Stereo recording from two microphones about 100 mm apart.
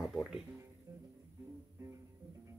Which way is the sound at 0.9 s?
35° right (ahead or behind).